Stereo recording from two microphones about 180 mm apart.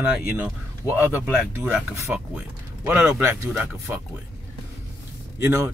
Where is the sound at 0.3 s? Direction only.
10° right (ahead or behind).